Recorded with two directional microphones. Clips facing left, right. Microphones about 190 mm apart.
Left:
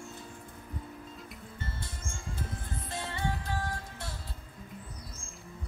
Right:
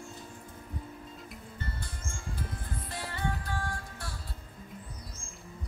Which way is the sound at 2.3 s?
25° left (ahead or behind).